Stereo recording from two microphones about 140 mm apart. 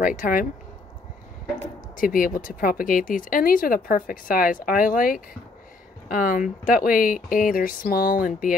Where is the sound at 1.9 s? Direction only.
85° left.